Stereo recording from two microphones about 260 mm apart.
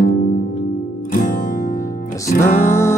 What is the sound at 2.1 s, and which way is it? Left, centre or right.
Music, centre.